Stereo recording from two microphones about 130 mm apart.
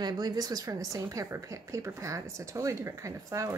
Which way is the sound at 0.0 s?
30° right (ahead or behind).